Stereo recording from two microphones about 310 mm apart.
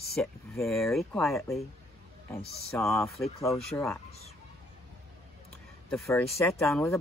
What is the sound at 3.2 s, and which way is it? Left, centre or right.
Speech, centre.